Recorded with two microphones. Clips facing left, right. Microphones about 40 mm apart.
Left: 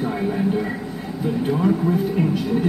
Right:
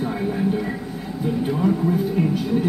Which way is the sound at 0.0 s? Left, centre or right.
Centre.